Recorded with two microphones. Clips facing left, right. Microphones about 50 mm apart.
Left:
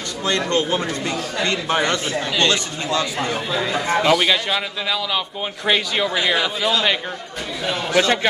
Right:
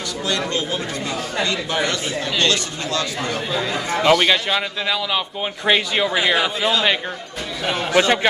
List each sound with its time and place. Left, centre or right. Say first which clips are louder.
0.5 s a man's voice: left 4 dB; left; by 7.0 s centre
7.6 s a man's voice: right 1 dB; centre